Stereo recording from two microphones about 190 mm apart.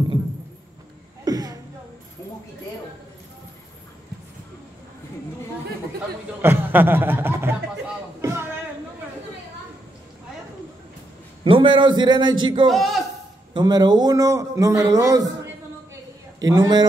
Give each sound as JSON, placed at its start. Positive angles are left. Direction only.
{"t": 1.2, "sound": "a sound", "side_deg": -20}
{"t": 6.4, "sound": "speech", "side_deg": -10}
{"t": 8.2, "sound": "a sound", "side_deg": -15}
{"t": 11.4, "sound": "a man's voice", "side_deg": -25}
{"t": 12.6, "sound": "a man's voice", "side_deg": 0}
{"t": 13.5, "sound": "speech", "side_deg": -20}
{"t": 16.3, "sound": "a man's voice", "side_deg": -20}